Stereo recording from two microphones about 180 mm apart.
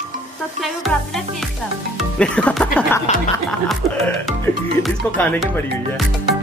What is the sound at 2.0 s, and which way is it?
Speech, 5° left (ahead or behind).